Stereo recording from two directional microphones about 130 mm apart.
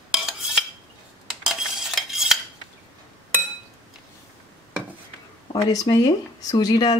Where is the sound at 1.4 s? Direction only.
Centre (ahead or behind).